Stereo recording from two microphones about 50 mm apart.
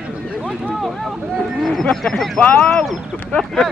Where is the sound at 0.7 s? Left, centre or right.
Centre.